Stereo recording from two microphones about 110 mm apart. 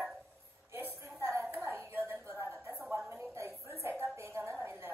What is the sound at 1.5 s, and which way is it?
Hands, 20° right (ahead or behind).